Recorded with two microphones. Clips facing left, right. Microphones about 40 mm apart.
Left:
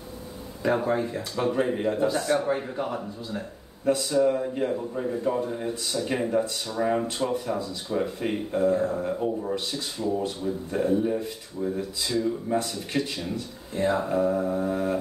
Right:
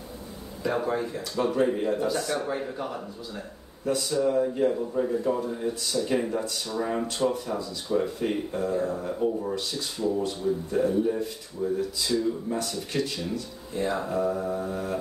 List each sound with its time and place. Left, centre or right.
0.6 s speech: centre
10.0 s speech: left
12.0 s speech: centre
12.5 s speech: left